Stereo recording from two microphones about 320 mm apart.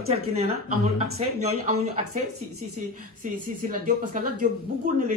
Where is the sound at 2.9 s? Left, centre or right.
Right.